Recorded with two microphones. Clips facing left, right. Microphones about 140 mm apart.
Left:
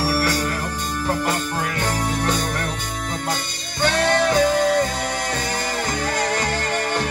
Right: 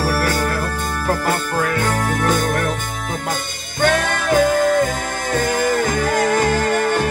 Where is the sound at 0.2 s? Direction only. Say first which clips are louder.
Right 2 dB; 40° right (ahead or behind).